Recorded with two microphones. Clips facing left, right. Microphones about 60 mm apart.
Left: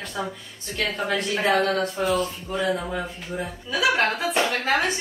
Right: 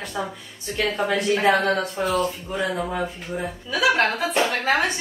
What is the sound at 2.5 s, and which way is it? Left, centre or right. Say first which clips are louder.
Speech: even; centre.